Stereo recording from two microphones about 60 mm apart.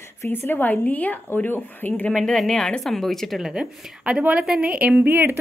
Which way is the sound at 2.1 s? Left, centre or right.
Centre.